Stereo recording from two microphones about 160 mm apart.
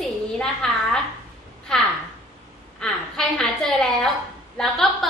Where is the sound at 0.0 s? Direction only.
5° left (ahead or behind).